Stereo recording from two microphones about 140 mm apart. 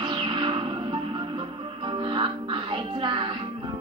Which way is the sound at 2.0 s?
35° right (ahead or behind).